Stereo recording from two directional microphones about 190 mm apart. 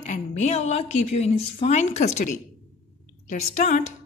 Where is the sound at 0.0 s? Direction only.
40° left (ahead or behind).